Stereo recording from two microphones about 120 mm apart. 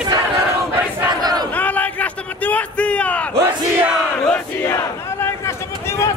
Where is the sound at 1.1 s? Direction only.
35° right (ahead or behind).